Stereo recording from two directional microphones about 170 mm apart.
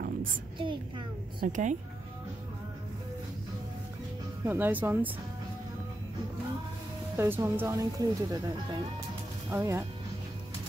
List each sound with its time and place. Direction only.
0.6 s a sound: 30° right (ahead or behind)
1.4 s speech: 45° right (ahead or behind)
4.5 s speech: 10° right (ahead or behind)
7.2 s speech: 15° right (ahead or behind)